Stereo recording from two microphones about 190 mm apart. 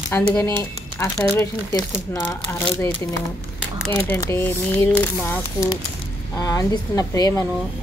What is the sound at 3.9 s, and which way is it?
A woman's voice, 10° left (ahead or behind).